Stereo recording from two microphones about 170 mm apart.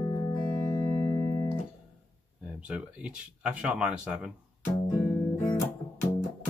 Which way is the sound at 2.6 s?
5° right (ahead or behind).